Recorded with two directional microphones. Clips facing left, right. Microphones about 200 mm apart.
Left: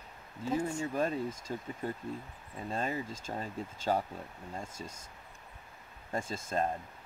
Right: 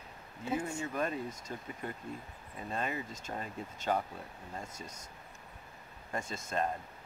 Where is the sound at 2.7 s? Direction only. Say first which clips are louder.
Left 2 dB; 30° left (ahead or behind).